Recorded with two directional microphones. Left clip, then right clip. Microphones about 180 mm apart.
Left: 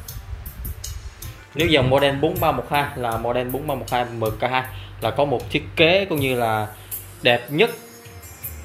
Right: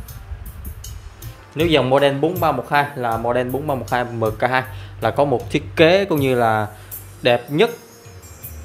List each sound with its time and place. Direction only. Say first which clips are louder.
1.6 s speech: right 2 dB; 15° right (ahead or behind)
7.2 s speech: right 2 dB; 20° right (ahead or behind)